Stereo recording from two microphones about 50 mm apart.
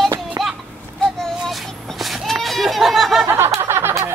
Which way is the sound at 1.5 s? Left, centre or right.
Centre.